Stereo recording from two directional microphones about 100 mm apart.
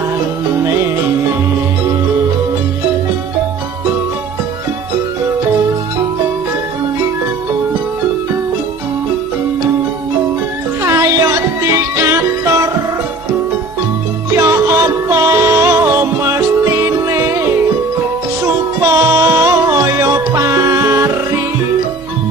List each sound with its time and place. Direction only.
10.8 s music: 30° right (ahead or behind)
14.4 s music: 30° right (ahead or behind)